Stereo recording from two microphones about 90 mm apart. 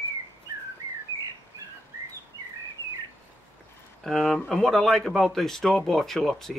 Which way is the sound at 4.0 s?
Centre (ahead or behind).